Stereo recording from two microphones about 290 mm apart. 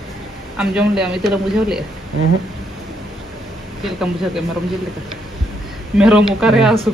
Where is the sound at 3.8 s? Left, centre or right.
Centre.